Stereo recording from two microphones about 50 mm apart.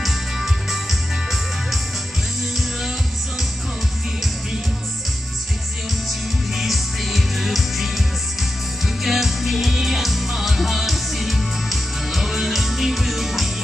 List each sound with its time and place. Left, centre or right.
0.0 s music: centre
6.5 s music: centre